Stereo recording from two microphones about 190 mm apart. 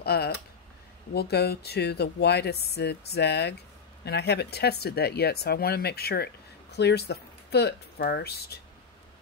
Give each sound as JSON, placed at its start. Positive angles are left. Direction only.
{"t": 0.0, "sound": "speech", "side_deg": 55}